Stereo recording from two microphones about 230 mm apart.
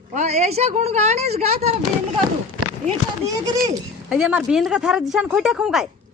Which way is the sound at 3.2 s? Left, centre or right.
Centre.